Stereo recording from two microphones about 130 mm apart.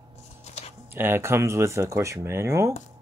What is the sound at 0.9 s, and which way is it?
Speech, 15° right (ahead or behind).